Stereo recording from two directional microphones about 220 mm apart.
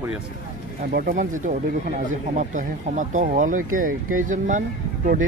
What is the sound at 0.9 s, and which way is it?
Speech, 40° right (ahead or behind).